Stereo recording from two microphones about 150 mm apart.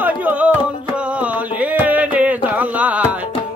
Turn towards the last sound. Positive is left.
turn(degrees=-10)  # may be behind; listen again after turning